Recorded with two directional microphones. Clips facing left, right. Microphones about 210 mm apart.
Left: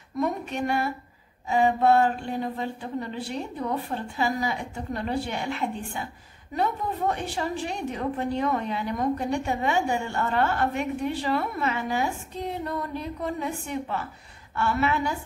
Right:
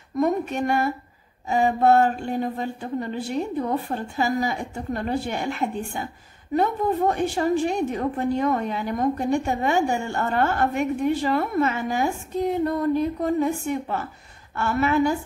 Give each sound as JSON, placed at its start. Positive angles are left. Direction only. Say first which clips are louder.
{"t": 0.2, "sound": "a woman's voice", "louder": "right 5 dB", "side_deg": -45}